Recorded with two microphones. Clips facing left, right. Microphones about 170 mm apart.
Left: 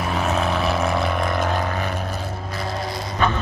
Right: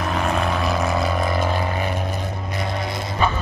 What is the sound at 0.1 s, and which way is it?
Vehicle, 5° left (ahead or behind).